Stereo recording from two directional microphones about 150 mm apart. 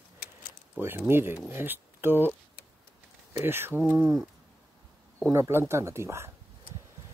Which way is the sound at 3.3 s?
15° right (ahead or behind).